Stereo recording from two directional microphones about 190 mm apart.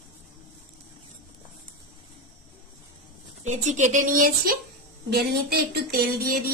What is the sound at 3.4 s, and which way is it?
A woman's voice, 40° right (ahead or behind).